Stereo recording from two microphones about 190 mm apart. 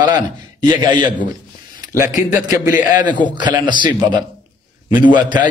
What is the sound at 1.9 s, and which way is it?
Speech, 45° left (ahead or behind).